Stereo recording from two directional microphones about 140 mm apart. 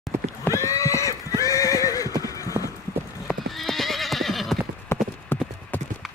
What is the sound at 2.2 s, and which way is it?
Clip-clop, 25° left (ahead or behind).